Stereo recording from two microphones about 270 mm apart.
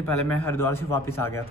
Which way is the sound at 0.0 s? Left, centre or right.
Centre.